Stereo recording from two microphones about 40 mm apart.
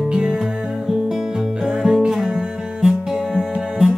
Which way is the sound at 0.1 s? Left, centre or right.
Centre.